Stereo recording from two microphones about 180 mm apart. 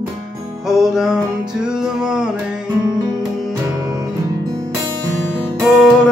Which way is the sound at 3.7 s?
20° right (ahead or behind).